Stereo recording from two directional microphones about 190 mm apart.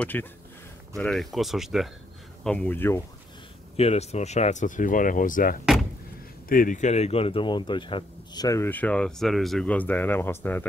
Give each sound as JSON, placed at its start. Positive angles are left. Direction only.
{"t": 0.0, "sound": "speech", "side_deg": 10}
{"t": 3.7, "sound": "speech", "side_deg": 35}